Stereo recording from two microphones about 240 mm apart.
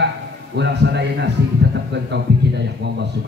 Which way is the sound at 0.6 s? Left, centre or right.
Right.